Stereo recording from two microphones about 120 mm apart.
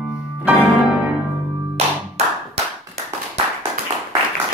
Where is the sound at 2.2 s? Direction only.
65° right (ahead or behind).